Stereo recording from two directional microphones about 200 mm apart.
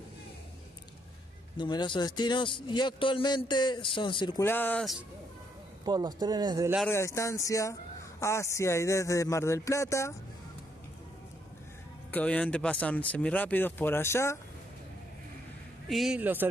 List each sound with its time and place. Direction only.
1.6 s a man's voice: 20° left (ahead or behind)
4.5 s speech: 10° left (ahead or behind)
5.9 s speech: 20° right (ahead or behind)
6.9 s speech: 15° left (ahead or behind)
12.1 s speech: 5° left (ahead or behind)
15.9 s a man's voice: centre (ahead or behind)